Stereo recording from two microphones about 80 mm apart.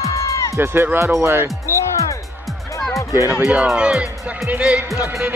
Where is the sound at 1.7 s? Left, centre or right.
Left.